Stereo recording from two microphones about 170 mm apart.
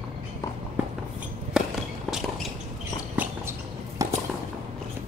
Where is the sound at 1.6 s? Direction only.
5° right (ahead or behind).